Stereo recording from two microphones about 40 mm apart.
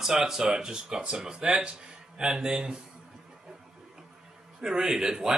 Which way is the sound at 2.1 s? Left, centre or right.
Centre.